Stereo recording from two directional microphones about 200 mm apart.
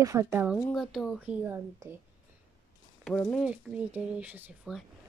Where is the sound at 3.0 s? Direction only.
Centre (ahead or behind).